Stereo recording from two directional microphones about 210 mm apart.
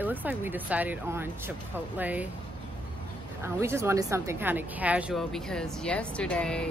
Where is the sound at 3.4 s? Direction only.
10° right (ahead or behind).